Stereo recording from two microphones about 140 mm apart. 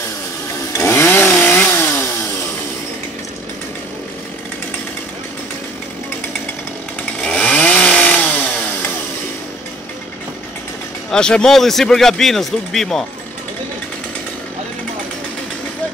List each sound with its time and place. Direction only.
0.7 s chainsaw: 20° left (ahead or behind)
7.2 s chainsaw: 5° left (ahead or behind)
11.1 s speech: 5° left (ahead or behind)